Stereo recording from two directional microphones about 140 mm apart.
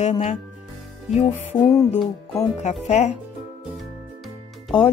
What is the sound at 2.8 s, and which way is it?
Music, 50° left (ahead or behind).